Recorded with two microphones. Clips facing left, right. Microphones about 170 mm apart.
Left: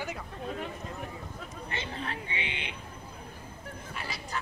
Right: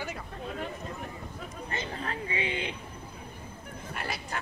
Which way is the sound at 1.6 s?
40° right (ahead or behind).